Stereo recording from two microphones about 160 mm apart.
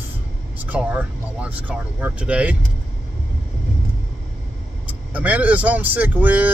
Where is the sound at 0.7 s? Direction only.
10° right (ahead or behind).